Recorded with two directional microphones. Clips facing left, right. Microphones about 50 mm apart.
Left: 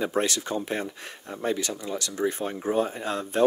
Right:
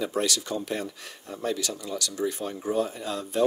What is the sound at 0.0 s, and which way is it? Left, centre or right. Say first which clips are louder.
Speech: left 2 dB; left.